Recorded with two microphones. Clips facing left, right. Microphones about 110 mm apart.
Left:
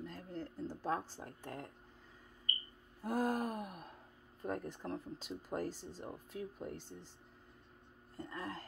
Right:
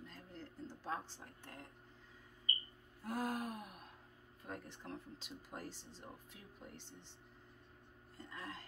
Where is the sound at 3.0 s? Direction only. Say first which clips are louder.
Left 5 dB; 45° left (ahead or behind).